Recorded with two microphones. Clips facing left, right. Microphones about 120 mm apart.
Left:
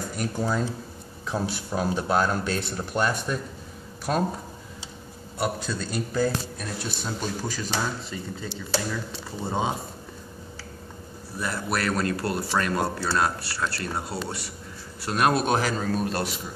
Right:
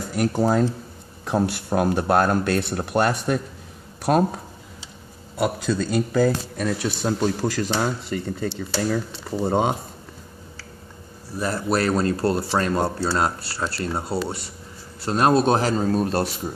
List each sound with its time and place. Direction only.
0.1 s speech: 75° right (ahead or behind)
6.1 s speech: 90° right; by 8.5 s 65° right (ahead or behind)
8.5 s speech: 45° right (ahead or behind)
11.3 s speech: 30° right (ahead or behind)